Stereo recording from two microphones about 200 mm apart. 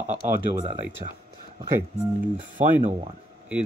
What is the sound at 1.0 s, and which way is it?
Speech, 30° right (ahead or behind).